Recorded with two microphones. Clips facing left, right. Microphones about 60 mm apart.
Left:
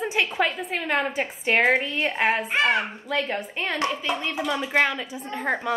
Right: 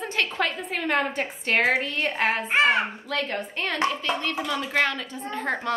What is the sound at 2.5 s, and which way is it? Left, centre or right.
Speech, right.